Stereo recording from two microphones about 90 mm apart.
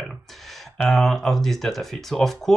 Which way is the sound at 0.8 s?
Centre (ahead or behind).